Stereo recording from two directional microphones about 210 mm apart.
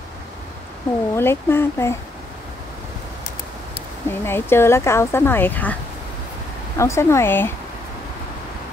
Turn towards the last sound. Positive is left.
turn(degrees=10)  # may be behind; listen again after turning